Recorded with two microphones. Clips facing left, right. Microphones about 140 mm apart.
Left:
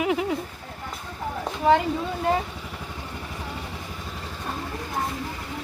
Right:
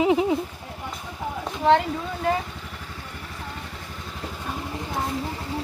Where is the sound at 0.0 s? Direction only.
20° right (ahead or behind).